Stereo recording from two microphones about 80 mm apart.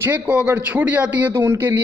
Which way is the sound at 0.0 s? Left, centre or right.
Right.